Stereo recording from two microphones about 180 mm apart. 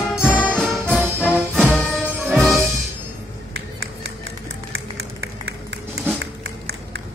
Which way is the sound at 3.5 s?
90° right.